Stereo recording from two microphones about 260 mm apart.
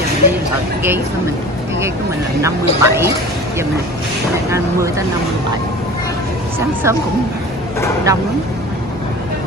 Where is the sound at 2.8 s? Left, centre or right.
Centre.